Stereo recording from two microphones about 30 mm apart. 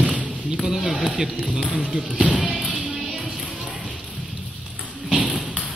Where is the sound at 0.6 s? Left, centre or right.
Centre.